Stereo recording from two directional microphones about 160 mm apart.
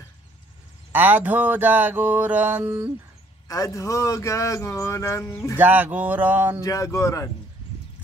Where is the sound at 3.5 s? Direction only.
20° left (ahead or behind).